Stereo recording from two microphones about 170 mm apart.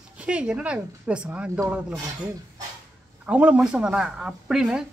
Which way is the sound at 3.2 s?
10° right (ahead or behind).